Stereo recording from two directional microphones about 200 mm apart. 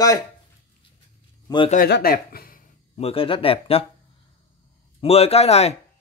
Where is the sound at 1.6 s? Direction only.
50° left (ahead or behind).